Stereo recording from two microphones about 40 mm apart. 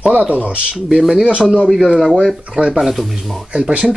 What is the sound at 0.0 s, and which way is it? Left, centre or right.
Speech, right.